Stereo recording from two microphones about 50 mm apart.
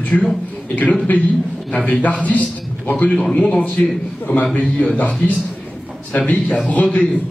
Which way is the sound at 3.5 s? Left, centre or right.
Left.